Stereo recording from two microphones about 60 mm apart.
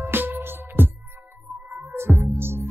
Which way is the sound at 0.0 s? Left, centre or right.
Right.